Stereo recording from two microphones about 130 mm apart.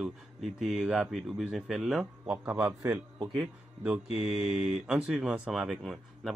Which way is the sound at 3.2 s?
40° right (ahead or behind).